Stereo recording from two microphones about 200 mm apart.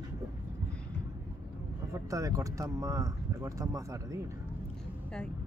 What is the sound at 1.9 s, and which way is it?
Speech, 15° right (ahead or behind).